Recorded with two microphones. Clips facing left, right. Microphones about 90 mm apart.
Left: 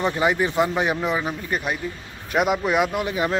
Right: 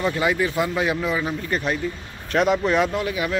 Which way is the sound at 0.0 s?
25° left (ahead or behind).